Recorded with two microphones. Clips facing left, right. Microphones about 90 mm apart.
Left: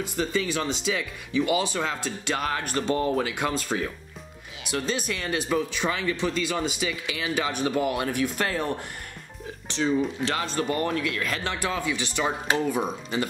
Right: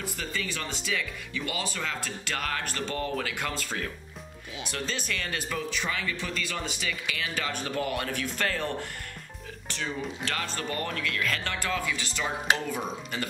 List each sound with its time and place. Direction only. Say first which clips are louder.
0.0 s speech: left 7 dB; 20° left (ahead or behind)